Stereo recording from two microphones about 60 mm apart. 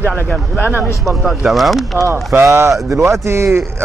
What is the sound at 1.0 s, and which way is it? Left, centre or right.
Speech, centre.